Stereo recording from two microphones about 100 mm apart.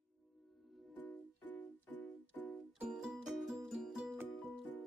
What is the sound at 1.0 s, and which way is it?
Music, 20° left (ahead or behind).